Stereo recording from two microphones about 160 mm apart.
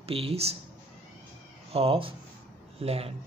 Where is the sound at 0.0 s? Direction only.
35° right (ahead or behind).